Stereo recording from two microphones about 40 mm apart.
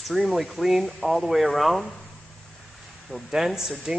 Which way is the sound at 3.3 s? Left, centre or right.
Centre.